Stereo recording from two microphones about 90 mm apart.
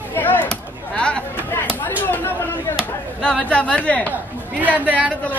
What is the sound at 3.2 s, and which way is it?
Speech, 10° left (ahead or behind).